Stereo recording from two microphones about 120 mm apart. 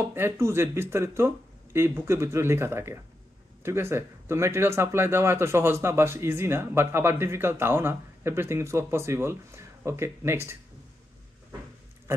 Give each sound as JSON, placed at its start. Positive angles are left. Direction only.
{"t": 0.1, "sound": "speech", "side_deg": -20}